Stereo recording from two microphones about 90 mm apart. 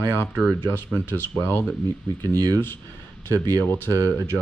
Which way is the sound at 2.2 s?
50° right (ahead or behind).